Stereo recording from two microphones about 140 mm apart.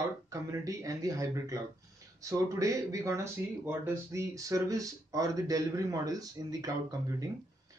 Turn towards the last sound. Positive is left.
turn(degrees=-25)  # may be behind; listen again after turning